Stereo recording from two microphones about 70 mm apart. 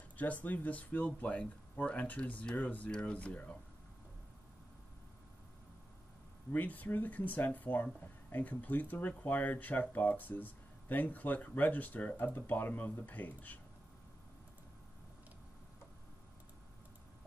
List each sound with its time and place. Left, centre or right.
0.2 s speech: left
6.5 s speech: left